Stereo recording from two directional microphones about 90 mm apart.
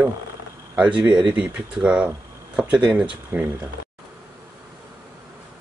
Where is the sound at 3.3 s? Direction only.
25° right (ahead or behind).